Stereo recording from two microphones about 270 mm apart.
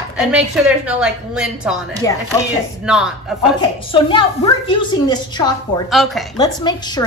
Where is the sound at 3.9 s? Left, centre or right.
Centre.